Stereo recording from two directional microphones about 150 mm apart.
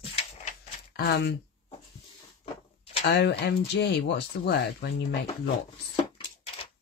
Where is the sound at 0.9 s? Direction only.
90° left.